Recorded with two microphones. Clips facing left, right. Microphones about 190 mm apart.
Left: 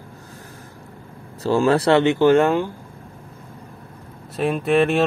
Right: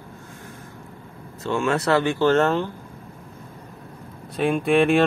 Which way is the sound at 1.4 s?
35° left (ahead or behind).